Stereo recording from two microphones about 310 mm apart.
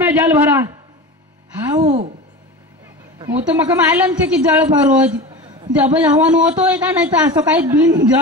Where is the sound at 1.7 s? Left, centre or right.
Right.